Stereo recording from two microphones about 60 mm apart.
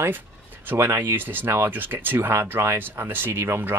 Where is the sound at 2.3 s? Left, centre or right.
Right.